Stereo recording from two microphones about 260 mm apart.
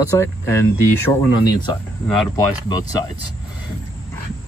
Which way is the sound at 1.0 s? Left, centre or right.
Centre.